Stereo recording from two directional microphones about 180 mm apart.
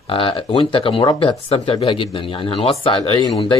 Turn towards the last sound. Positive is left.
turn(degrees=30)  # may be behind; listen again after turning